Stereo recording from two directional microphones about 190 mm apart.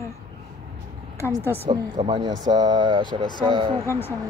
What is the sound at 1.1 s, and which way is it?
Speech, 15° left (ahead or behind).